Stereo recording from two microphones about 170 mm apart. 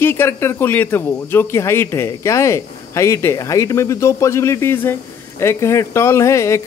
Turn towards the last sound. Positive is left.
turn(degrees=15)  # may be behind; listen again after turning